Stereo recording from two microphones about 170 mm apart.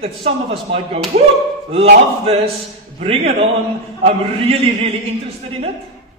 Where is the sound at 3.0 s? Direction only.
40° right (ahead or behind).